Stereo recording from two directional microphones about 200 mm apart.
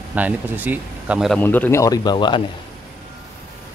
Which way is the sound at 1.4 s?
10° left (ahead or behind).